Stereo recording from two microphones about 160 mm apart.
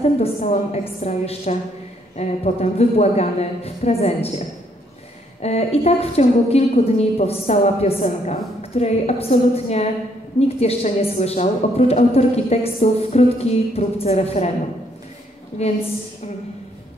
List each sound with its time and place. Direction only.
0.0 s a woman's voice: 40° left (ahead or behind)
15.6 s a woman's voice: 40° left (ahead or behind)